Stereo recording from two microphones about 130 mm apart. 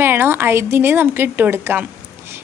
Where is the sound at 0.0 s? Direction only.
15° right (ahead or behind).